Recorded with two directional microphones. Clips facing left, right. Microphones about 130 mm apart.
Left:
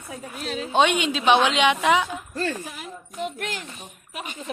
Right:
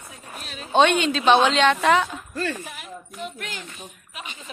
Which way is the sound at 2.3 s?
30° left (ahead or behind).